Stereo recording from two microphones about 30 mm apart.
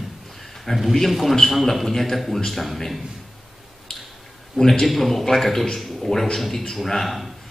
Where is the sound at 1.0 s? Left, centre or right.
Centre.